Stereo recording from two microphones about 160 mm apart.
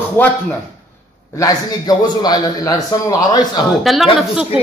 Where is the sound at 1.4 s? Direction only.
25° left (ahead or behind).